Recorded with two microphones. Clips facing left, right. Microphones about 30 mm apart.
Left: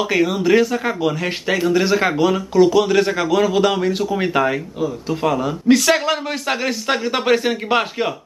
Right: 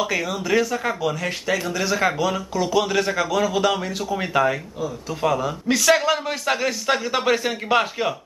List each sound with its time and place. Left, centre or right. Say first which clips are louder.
0.0 s speech: left 6 dB; centre